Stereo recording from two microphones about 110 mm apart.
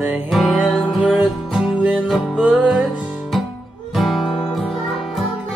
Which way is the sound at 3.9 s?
Centre (ahead or behind).